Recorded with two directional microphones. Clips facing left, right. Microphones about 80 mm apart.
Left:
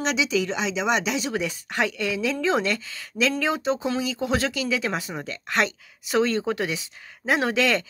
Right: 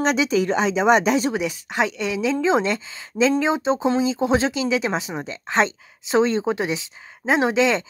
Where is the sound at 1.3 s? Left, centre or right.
Centre.